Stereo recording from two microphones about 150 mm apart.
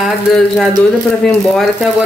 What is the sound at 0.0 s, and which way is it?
Speech, centre (ahead or behind).